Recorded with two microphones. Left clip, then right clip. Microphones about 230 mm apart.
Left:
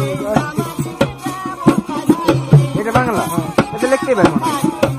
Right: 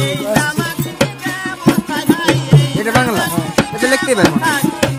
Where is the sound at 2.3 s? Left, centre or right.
Right.